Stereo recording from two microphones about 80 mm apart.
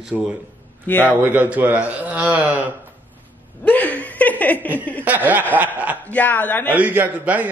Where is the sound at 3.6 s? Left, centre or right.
Left.